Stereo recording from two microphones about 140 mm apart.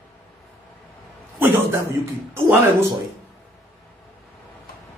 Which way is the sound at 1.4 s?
15° right (ahead or behind).